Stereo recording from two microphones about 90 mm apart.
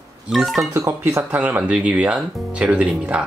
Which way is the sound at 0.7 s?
35° right (ahead or behind).